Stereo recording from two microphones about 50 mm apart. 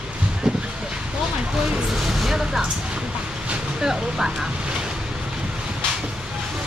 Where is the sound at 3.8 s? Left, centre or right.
Centre.